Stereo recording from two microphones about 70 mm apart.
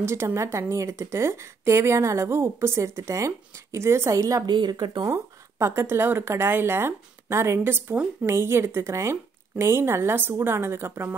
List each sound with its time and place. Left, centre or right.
0.0 s speech: right
4.5 s speech: right
5.1 s speech: right
7.9 s a woman's voice: centre
8.3 s speech: right